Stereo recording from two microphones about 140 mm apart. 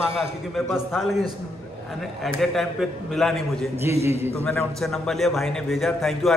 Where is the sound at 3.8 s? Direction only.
20° right (ahead or behind).